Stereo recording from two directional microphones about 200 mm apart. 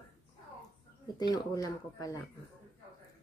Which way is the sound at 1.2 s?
20° left (ahead or behind).